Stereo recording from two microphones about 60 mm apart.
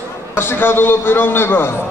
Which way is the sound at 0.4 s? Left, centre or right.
Left.